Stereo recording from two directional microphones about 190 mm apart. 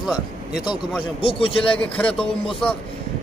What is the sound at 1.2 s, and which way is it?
Speech, 30° left (ahead or behind).